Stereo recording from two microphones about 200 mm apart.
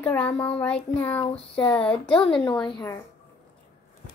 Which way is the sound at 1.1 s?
30° left (ahead or behind).